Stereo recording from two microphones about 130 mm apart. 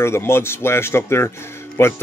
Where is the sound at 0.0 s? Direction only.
20° left (ahead or behind).